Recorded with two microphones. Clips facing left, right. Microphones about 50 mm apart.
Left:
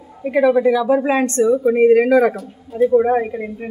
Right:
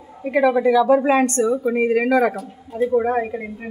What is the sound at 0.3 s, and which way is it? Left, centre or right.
Speech, centre.